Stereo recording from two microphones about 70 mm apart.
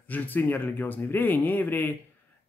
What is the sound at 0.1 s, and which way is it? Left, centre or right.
A man's voice, left.